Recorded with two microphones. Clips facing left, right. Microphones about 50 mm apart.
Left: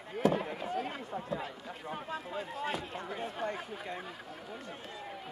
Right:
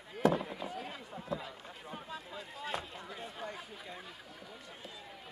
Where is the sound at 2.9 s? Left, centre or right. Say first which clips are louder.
Left 7 dB; left.